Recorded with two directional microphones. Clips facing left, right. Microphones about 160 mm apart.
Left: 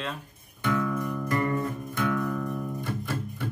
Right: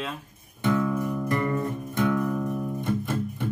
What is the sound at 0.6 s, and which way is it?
Music, 20° right (ahead or behind).